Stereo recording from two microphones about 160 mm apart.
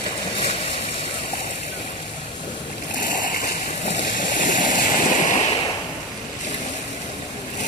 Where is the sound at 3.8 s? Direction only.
55° left (ahead or behind).